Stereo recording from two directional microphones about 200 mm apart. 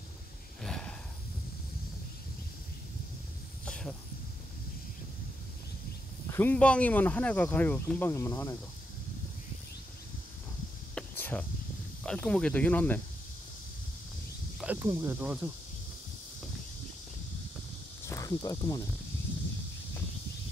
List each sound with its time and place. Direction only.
0.6 s snort: 5° left (ahead or behind)
3.6 s snake: 5° left (ahead or behind)
6.2 s speech: 10° left (ahead or behind)
11.0 s a sound: 10° left (ahead or behind)
12.0 s speech: 5° left (ahead or behind)
14.6 s speech: 10° right (ahead or behind)
18.0 s speech: 15° left (ahead or behind)